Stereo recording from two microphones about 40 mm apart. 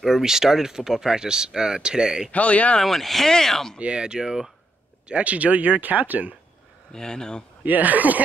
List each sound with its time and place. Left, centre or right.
0.2 s speech: centre
2.3 s speech: left
2.8 s speech: centre
3.7 s speech: right
5.0 s speech: right
6.9 s speech: centre
7.6 s speech: right